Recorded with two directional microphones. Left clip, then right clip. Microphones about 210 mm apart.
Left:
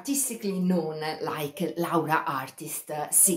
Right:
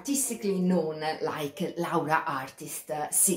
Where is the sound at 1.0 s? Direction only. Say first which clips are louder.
Even; 20° left (ahead or behind).